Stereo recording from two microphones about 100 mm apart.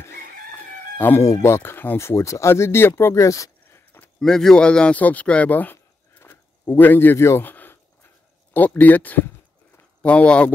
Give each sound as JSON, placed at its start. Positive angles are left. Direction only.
{"t": 0.9, "sound": "speech", "side_deg": 20}
{"t": 4.2, "sound": "speech", "side_deg": 5}
{"t": 9.8, "sound": "a sound", "side_deg": 15}